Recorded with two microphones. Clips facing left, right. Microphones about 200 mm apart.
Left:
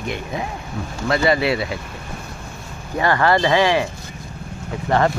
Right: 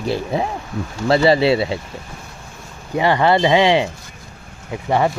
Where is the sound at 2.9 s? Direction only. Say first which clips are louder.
Right 2 dB; 15° right (ahead or behind).